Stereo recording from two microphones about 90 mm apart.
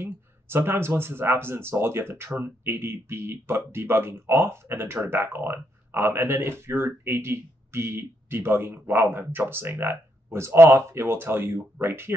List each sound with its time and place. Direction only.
0.0 s speech: 25° right (ahead or behind)